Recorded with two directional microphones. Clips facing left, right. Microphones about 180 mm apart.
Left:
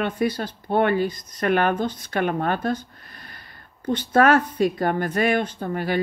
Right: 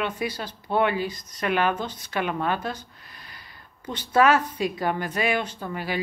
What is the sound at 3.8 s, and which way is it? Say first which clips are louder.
A woman's voice: left 3 dB; 55° left (ahead or behind).